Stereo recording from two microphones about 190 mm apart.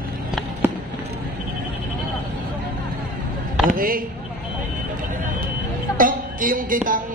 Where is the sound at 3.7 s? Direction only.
50° right (ahead or behind).